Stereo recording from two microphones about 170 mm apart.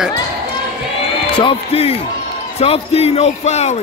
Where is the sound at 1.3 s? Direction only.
35° left (ahead or behind).